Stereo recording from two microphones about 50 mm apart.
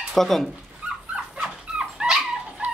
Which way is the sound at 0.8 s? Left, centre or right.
Right.